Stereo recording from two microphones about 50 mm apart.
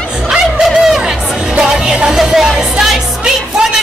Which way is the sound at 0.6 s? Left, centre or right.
Centre.